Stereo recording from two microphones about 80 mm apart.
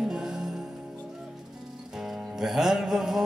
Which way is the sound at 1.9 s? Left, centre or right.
Centre.